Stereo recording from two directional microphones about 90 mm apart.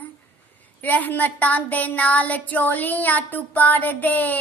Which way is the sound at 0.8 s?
20° left (ahead or behind).